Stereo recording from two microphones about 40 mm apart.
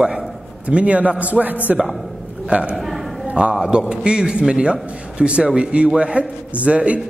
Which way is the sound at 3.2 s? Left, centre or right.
Right.